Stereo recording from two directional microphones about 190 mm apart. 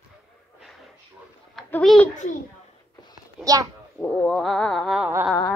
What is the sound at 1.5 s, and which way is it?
Speech, centre (ahead or behind).